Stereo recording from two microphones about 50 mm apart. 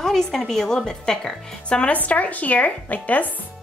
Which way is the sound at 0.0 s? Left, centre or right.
Centre.